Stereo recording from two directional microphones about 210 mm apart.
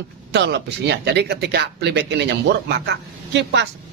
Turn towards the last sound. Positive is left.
turn(degrees=-55)  # may be behind; listen again after turning